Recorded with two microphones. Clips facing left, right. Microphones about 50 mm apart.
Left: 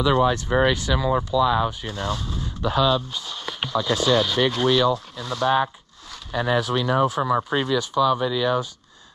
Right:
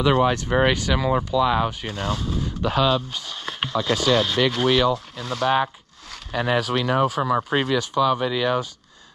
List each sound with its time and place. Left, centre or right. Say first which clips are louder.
0.0 s speech: even; right
2.0 s speech: right 2 dB; centre
2.6 s speech: even; right
3.3 s a sound: right 1 dB; right
4.1 s speech: even; right
4.6 s speech: even; right
6.6 s speech: even; right